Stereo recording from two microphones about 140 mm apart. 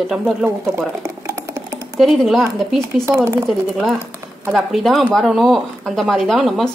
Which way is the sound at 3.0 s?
15° right (ahead or behind).